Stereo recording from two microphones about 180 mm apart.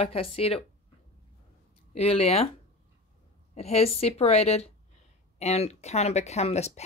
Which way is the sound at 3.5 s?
35° left (ahead or behind).